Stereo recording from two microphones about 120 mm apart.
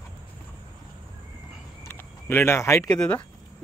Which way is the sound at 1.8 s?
20° left (ahead or behind).